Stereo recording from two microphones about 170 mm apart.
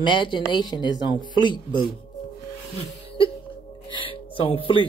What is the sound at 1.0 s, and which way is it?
Speech, 25° right (ahead or behind).